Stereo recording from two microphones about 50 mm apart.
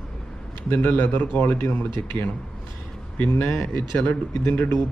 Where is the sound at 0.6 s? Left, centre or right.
Left.